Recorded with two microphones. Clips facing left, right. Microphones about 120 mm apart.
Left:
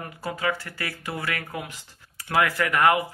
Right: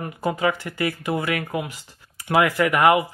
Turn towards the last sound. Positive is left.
turn(degrees=-10)  # may be behind; listen again after turning